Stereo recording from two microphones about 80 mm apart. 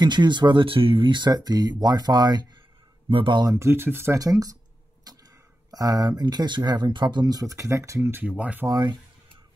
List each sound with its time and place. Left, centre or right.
0.0 s speech: right
1.3 s speech: right
3.1 s speech: right
3.5 s speech: right
4.2 s speech: right
5.1 s a sound: right
5.7 s speech: right
8.3 s speech: centre
8.6 s speech: right